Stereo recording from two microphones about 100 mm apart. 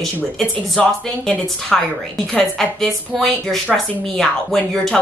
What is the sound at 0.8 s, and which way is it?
Speech, 10° left (ahead or behind).